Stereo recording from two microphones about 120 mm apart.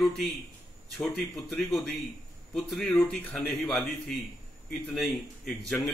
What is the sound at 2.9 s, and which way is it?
Speech, 15° left (ahead or behind).